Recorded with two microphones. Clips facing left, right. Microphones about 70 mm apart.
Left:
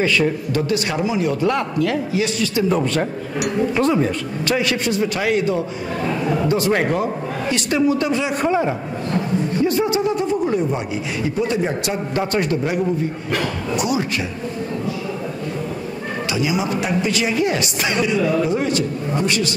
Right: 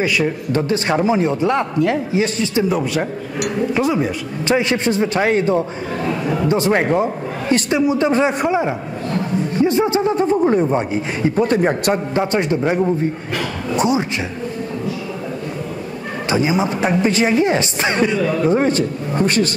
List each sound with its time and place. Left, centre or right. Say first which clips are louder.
0.0 s speech: even; centre
0.5 s a man's voice: right 3 dB; right
2.7 s speech: even; centre
4.5 s a man's voice: right 4 dB; right
8.1 s a man's voice: right 5 dB; right
8.4 s speech: right 1 dB; centre
9.7 s a man's voice: right 3 dB; right
12.1 s a man's voice: right 2 dB; right
13.7 s a sound: right 4 dB; right
16.3 s a man's voice: right 4 dB; right